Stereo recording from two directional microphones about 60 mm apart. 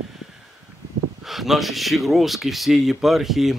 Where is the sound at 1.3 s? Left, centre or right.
Centre.